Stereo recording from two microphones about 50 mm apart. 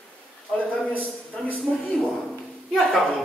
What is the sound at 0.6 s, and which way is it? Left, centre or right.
Speech, left.